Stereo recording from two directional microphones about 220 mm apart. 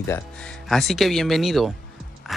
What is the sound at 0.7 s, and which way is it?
Speech, centre (ahead or behind).